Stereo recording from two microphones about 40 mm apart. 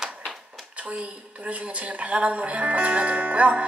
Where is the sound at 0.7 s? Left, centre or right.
Right.